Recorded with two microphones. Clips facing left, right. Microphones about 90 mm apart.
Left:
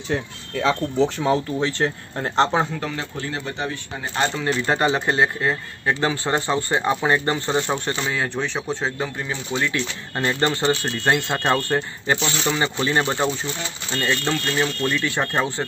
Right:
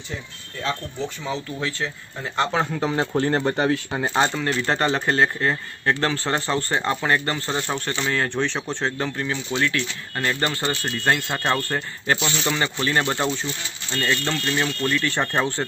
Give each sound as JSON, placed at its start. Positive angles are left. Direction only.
{"t": 0.1, "sound": "speech", "side_deg": 90}
{"t": 1.6, "sound": "speech", "side_deg": 30}
{"t": 3.0, "sound": "speech", "side_deg": -45}
{"t": 4.3, "sound": "speech", "side_deg": 5}
{"t": 4.6, "sound": "a man's voice", "side_deg": 15}
{"t": 9.7, "sound": "speech", "side_deg": 20}
{"t": 12.2, "sound": "speech", "side_deg": 0}
{"t": 12.5, "sound": "a man's voice", "side_deg": 20}